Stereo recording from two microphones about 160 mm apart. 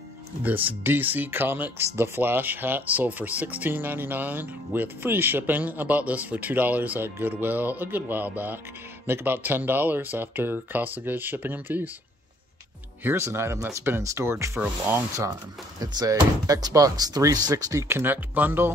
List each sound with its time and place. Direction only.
0.4 s speech: 10° right (ahead or behind)
13.0 s speech: 15° right (ahead or behind)